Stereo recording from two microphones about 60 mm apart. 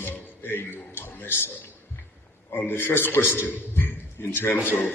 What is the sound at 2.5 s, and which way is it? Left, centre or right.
A man's voice, left.